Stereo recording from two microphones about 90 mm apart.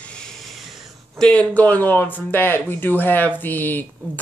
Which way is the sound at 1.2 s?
10° left (ahead or behind).